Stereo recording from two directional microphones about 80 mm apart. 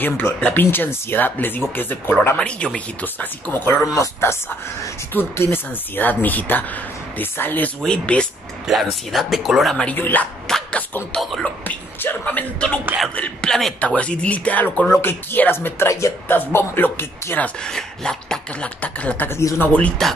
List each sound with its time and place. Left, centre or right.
0.4 s speech: left
3.8 s speech: left
7.8 s beatboxing: centre
8.6 s speech: centre
9.9 s speech: left
10.4 s dog: centre
11.4 s speech: left
13.1 s beatboxing: centre
13.5 s speech: centre
13.7 s beatboxing: centre
14.9 s speech: left
17.6 s beatboxing: centre
19.2 s speech: left
20.0 s speech: centre